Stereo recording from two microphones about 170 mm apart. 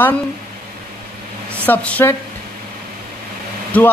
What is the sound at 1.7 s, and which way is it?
Speech, 10° left (ahead or behind).